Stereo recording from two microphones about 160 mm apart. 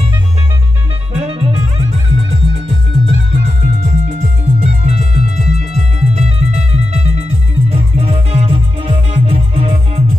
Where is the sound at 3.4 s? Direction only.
45° right (ahead or behind).